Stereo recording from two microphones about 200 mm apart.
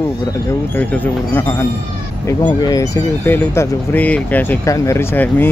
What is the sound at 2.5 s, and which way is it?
Speech, 15° left (ahead or behind).